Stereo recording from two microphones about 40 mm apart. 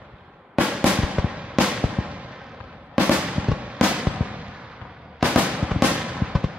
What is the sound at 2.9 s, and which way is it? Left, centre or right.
Fireworks, right.